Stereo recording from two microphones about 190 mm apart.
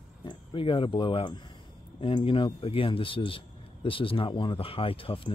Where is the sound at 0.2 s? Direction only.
25° left (ahead or behind).